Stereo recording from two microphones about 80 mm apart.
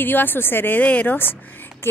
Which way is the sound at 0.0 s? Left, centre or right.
Left.